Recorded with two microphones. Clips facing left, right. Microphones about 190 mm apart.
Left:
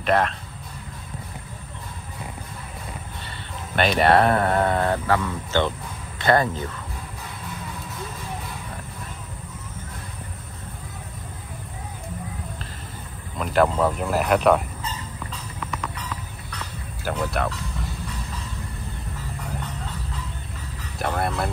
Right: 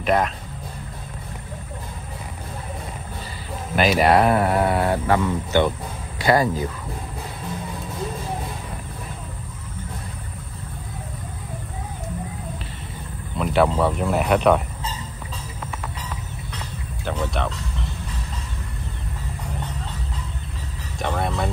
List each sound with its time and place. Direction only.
0.0 s a man's voice: 5° right (ahead or behind)
3.7 s speech: 5° right (ahead or behind)
13.4 s speech: centre (ahead or behind)
17.0 s speech: 5° left (ahead or behind)
21.0 s speech: 5° left (ahead or behind)